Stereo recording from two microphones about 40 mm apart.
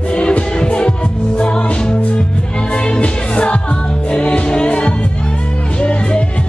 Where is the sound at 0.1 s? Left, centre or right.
Left.